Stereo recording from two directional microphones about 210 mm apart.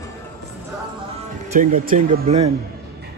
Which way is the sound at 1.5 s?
40° right (ahead or behind).